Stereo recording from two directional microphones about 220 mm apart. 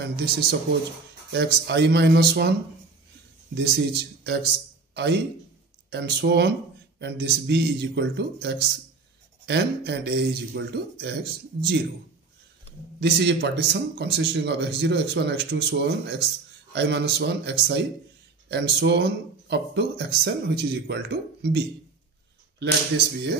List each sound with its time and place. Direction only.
0.0 s speech: 45° right (ahead or behind)
3.5 s speech: 45° right (ahead or behind)
13.0 s speech: 50° right (ahead or behind)